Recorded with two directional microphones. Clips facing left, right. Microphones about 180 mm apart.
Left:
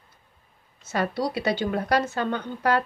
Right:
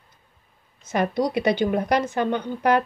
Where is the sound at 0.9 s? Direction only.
15° right (ahead or behind).